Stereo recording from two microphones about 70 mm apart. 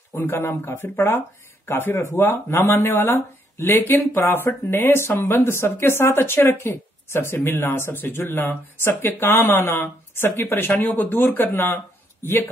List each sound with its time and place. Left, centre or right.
0.3 s speech: left
0.7 s speech: left